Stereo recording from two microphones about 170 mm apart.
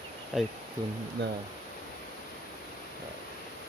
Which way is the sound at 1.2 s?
90° right.